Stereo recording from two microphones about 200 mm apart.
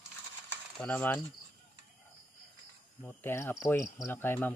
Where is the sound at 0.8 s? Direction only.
10° left (ahead or behind).